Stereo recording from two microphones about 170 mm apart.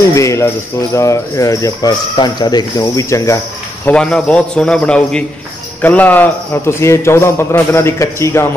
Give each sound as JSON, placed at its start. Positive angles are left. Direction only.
{"t": 0.1, "sound": "a man's voice", "side_deg": 15}
{"t": 3.8, "sound": "a man's voice", "side_deg": 5}